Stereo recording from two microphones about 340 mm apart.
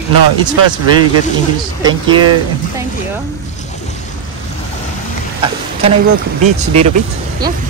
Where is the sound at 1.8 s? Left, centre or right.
Centre.